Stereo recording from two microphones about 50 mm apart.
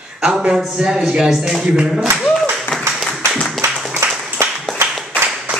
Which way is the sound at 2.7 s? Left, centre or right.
Centre.